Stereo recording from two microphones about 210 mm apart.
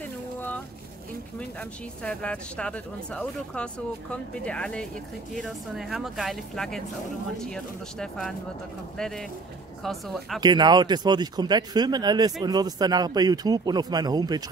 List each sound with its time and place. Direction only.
1.6 s speech: 5° left (ahead or behind)
10.4 s speech: 20° right (ahead or behind)